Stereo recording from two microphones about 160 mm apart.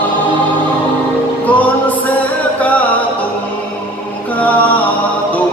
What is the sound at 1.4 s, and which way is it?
Music, 10° left (ahead or behind).